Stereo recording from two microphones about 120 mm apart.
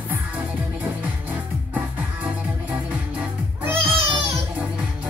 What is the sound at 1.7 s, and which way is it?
Music, 10° right (ahead or behind).